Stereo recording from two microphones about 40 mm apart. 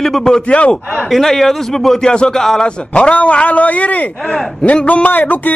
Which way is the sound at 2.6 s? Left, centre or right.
Left.